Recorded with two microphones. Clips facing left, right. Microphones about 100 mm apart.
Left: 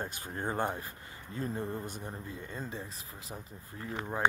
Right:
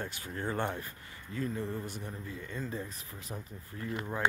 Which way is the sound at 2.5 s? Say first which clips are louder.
Right 4 dB; 25° left (ahead or behind).